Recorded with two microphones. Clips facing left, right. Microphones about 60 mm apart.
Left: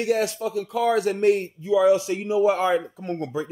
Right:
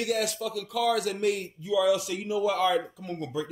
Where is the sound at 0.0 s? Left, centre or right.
Left.